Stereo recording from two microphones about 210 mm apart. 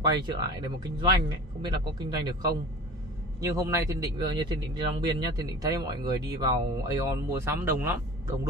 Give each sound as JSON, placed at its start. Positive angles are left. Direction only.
{"t": 0.0, "sound": "a man's voice", "side_deg": -20}